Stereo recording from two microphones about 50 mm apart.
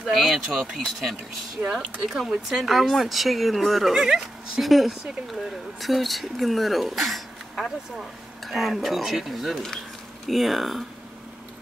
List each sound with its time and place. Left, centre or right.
0.1 s speech: centre
1.6 s speech: right
2.0 s speech: centre